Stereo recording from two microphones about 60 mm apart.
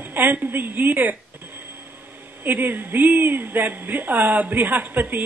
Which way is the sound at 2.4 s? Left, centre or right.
Right.